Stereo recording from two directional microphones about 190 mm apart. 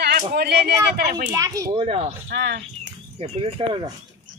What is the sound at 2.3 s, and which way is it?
Speech, 65° right (ahead or behind).